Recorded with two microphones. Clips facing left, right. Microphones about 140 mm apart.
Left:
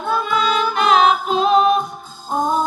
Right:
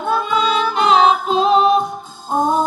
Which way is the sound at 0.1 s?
25° right (ahead or behind).